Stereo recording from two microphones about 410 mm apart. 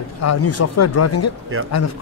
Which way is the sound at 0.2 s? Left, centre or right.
Left.